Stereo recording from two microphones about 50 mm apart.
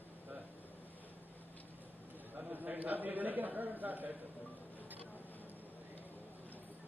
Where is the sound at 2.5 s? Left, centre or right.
Right.